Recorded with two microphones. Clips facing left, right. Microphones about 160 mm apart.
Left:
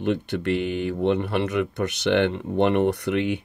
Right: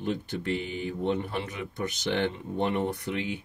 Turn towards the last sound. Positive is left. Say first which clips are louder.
# left 8 dB
turn(degrees=70)  # may be behind; listen again after turning